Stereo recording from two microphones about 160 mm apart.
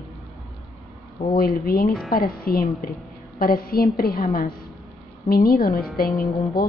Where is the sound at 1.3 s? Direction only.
70° left (ahead or behind).